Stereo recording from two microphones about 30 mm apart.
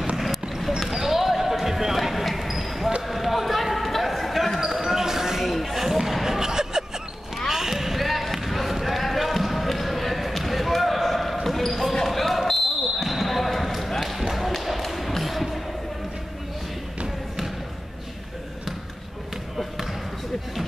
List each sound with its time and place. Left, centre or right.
0.2 s clip-clop: centre
0.9 s basketball bounce: centre
3.1 s a sound: centre
4.9 s basketball bounce: centre
5.6 s a sound: centre
6.2 s music: centre
7.4 s basketball bounce: centre